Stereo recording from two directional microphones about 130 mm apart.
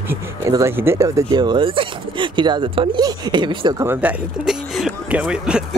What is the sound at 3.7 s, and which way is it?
Speech, 20° right (ahead or behind).